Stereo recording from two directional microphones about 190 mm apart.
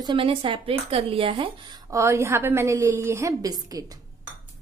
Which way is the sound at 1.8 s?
15° right (ahead or behind).